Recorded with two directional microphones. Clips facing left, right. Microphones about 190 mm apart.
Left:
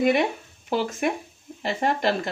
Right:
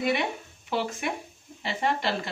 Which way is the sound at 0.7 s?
40° left (ahead or behind).